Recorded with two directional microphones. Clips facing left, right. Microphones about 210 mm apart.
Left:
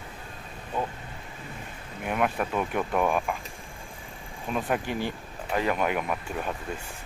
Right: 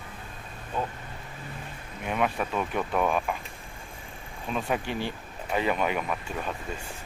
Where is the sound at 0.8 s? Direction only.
10° left (ahead or behind).